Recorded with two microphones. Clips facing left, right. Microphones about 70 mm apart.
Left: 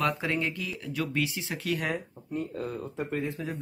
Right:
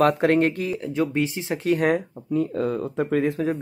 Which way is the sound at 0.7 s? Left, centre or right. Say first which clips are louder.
Right 7 dB; right.